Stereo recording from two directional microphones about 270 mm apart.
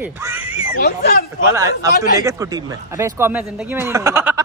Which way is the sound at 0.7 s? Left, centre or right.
Left.